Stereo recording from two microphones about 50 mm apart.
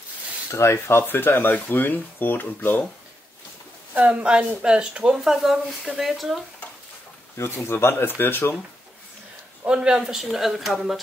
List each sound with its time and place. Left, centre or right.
0.5 s speech: left
3.9 s speech: right; by 6.4 s centre
7.3 s speech: left
9.7 s speech: centre